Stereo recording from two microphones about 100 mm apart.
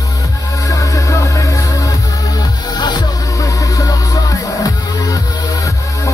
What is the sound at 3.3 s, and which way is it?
Music, 35° left (ahead or behind).